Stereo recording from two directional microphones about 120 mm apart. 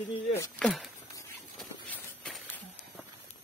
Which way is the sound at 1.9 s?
15° left (ahead or behind).